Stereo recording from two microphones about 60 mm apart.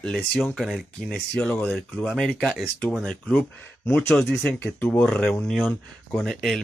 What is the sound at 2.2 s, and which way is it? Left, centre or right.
Speech, centre.